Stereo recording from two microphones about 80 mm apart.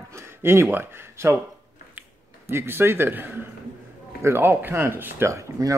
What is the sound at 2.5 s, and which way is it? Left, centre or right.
Speech, right.